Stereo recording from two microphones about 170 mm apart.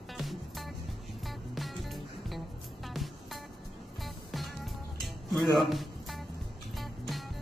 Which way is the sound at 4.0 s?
Centre (ahead or behind).